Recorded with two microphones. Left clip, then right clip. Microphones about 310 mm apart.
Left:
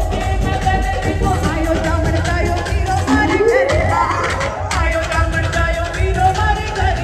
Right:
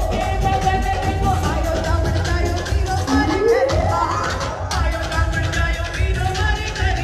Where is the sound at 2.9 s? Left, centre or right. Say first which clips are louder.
Left 4 dB; centre.